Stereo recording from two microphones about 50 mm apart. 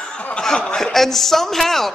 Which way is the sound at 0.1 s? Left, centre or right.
Left.